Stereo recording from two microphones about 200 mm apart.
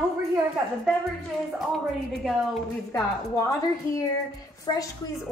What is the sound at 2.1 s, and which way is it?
Speech, centre (ahead or behind).